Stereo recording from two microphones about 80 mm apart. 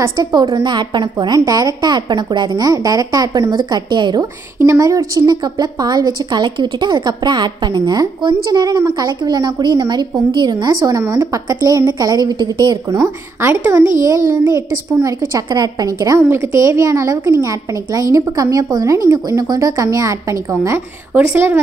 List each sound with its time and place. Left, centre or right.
0.2 s a woman's voice: right
4.7 s a woman's voice: right
7.8 s a woman's voice: right
8.2 s a woman's voice: right
13.4 s a woman's voice: right
16.2 s a woman's voice: right